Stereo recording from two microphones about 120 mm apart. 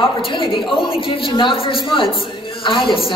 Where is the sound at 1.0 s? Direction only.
45° left (ahead or behind).